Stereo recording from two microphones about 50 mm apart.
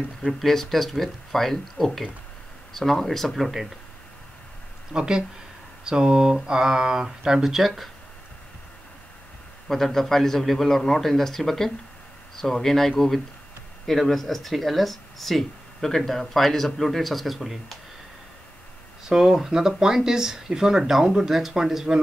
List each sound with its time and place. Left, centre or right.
0.3 s speech: centre
4.9 s speech: centre
9.7 s a man's voice: centre
19.0 s speech: centre